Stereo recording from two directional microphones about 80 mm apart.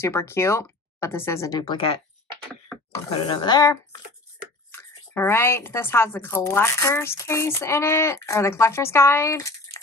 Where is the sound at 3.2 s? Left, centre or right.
Left.